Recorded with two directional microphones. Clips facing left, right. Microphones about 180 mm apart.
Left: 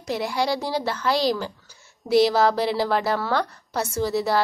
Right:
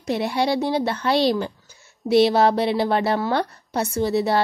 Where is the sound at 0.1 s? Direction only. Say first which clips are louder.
Right 3 dB; 25° right (ahead or behind).